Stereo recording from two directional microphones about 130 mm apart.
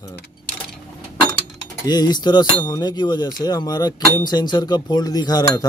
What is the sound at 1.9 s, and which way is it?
Speech, 35° left (ahead or behind).